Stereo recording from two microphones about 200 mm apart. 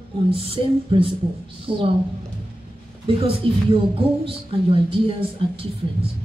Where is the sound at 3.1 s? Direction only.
25° right (ahead or behind).